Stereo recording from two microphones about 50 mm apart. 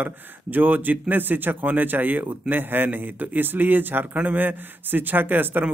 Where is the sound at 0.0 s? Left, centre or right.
Right.